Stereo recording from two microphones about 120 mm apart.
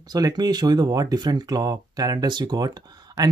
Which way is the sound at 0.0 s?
35° right (ahead or behind).